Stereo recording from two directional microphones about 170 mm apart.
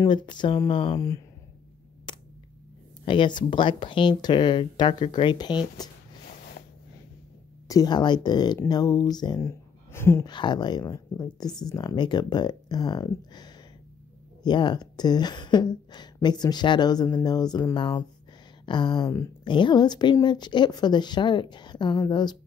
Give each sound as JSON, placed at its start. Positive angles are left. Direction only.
{"t": 0.0, "sound": "speech", "side_deg": 25}
{"t": 3.1, "sound": "speech", "side_deg": 25}
{"t": 7.6, "sound": "speech", "side_deg": 20}
{"t": 10.3, "sound": "speech", "side_deg": 25}